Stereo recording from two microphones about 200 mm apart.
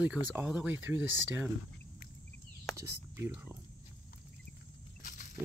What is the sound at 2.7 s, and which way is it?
Speech, 10° right (ahead or behind).